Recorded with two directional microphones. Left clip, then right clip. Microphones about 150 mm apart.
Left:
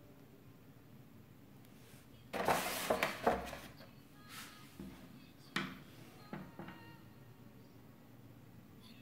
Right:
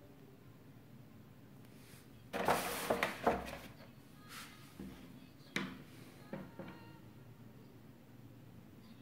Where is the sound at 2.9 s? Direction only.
5° right (ahead or behind).